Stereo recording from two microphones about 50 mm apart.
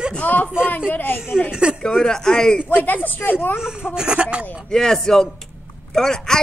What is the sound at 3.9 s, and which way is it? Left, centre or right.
Speech, centre.